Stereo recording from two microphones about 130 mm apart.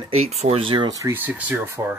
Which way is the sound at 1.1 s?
15° right (ahead or behind).